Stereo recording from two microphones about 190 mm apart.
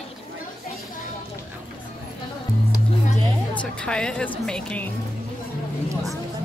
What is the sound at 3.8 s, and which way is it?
A woman's voice, 5° left (ahead or behind).